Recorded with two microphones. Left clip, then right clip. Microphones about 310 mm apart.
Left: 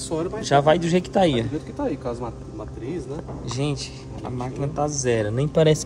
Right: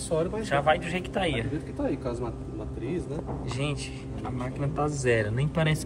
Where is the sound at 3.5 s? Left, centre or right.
Centre.